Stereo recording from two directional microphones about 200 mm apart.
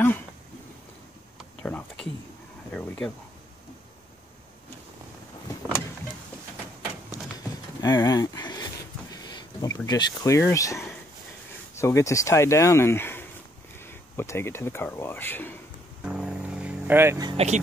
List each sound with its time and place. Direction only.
1.6 s a sound: 5° left (ahead or behind)
2.7 s speech: 5° left (ahead or behind)
7.1 s a sound: 20° left (ahead or behind)
10.5 s speech: 15° left (ahead or behind)
16.0 s music: 5° right (ahead or behind)
17.3 s speech: 30° right (ahead or behind)